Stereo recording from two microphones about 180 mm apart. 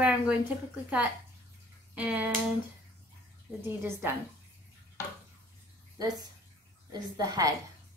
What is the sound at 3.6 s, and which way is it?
Speech, 15° right (ahead or behind).